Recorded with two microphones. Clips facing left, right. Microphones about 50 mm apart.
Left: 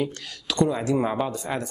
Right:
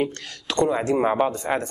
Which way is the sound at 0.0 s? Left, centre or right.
Right.